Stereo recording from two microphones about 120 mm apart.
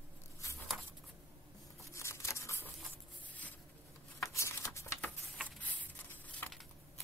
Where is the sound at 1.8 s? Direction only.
25° left (ahead or behind).